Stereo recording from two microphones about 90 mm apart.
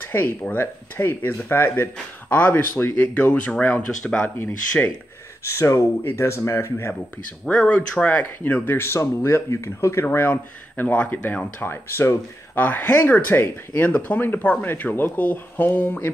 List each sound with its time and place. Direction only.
0.0 s speech: 25° left (ahead or behind)
5.4 s speech: 30° left (ahead or behind)
7.4 s speech: 15° left (ahead or behind); by 10.0 s 30° left (ahead or behind)
10.0 s speech: 20° left (ahead or behind)